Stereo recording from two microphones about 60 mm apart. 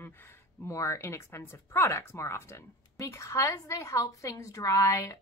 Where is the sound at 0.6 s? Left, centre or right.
Left.